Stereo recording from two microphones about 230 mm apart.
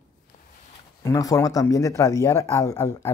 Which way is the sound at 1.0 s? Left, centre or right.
Centre.